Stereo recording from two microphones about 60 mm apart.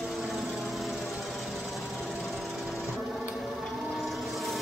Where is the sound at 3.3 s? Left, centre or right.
Centre.